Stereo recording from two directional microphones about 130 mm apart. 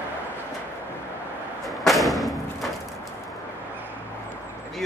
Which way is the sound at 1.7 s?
Centre (ahead or behind).